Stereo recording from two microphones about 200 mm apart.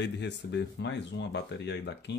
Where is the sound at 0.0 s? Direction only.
60° left (ahead or behind).